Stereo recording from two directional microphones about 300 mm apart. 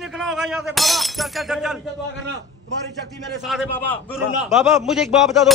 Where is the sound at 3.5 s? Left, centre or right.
Centre.